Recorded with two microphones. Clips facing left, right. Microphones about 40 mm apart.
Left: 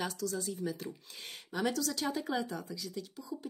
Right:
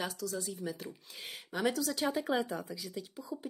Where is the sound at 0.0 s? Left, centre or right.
Centre.